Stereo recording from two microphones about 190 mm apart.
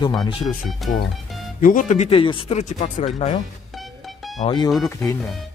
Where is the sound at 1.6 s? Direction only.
45° left (ahead or behind).